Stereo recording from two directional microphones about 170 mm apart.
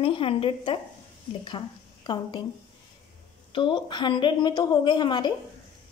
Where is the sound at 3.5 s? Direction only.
30° left (ahead or behind).